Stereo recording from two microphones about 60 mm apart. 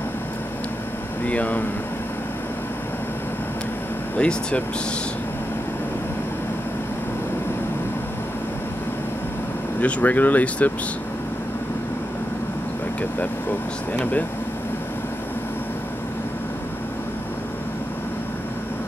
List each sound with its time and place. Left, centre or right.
1.2 s speech: left
4.2 s speech: centre
9.8 s speech: left
13.2 s speech: left